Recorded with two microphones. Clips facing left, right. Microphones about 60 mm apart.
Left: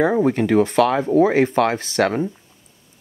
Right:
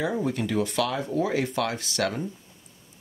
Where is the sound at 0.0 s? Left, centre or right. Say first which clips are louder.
Left 10 dB; left.